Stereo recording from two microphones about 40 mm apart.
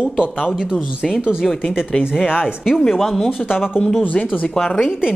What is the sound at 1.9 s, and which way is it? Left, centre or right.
Speech, centre.